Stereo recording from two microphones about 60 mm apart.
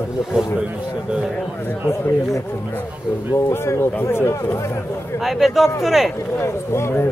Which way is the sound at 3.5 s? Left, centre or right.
Left.